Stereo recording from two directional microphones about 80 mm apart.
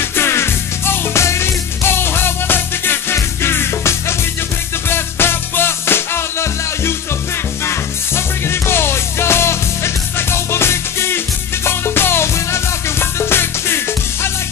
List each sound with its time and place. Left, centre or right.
0.0 s music: left